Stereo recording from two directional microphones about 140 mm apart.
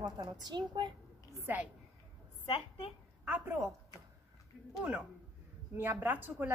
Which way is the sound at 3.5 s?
20° right (ahead or behind).